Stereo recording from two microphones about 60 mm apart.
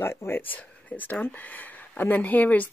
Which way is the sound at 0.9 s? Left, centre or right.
Left.